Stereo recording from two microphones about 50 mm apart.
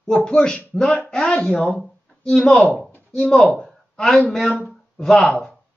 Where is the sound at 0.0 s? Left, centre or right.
Centre.